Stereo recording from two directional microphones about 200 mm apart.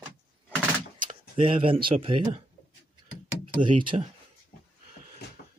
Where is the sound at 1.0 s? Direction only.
30° right (ahead or behind).